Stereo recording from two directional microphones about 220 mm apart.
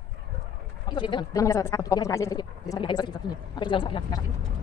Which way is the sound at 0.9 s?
20° left (ahead or behind).